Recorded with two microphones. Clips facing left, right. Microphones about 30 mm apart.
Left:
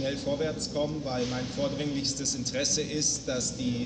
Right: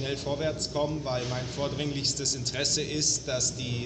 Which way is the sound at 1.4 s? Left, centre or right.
Right.